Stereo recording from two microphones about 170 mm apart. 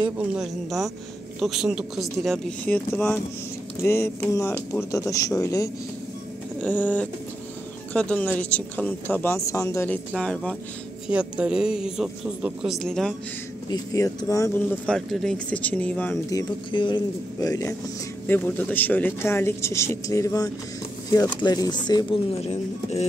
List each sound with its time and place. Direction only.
0.4 s speech: centre (ahead or behind); by 5.7 s 20° left (ahead or behind)
6.6 s speech: 10° left (ahead or behind)
11.1 s speech: 5° right (ahead or behind)
13.7 s speech: 20° left (ahead or behind)
16.3 s speech: 25° left (ahead or behind)